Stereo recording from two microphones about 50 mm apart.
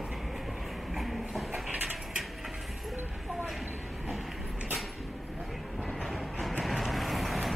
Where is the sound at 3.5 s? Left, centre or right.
Centre.